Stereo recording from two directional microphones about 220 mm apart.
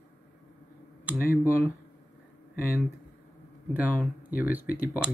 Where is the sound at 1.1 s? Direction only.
5° right (ahead or behind).